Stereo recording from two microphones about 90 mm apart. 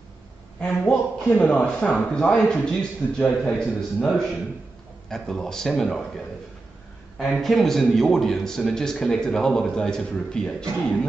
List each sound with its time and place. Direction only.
0.7 s a man's voice: 15° left (ahead or behind)
5.1 s speech: 5° left (ahead or behind)
7.2 s speech: centre (ahead or behind)